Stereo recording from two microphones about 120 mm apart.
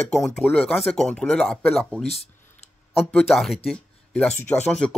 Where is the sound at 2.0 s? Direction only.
60° left (ahead or behind).